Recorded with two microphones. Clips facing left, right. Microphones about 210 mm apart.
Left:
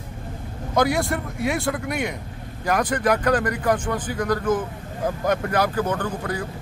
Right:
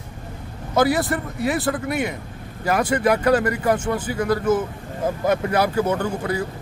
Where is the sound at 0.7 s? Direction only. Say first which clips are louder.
Right 2 dB; 5° right (ahead or behind).